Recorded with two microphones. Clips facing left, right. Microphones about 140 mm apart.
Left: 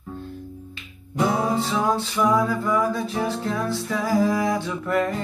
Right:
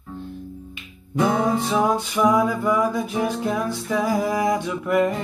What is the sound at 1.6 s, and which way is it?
Music, 15° right (ahead or behind).